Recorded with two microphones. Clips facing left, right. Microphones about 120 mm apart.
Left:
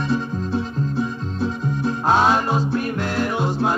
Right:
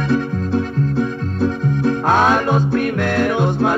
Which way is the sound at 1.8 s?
60° right (ahead or behind).